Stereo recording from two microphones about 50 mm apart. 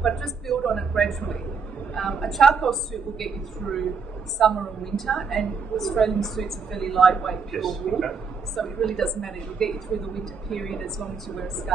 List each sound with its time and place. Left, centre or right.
0.0 s a woman's voice: centre